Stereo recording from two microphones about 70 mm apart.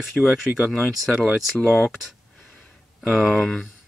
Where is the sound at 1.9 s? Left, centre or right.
Centre.